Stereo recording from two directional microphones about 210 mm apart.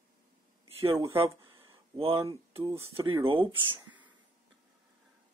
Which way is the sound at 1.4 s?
25° right (ahead or behind).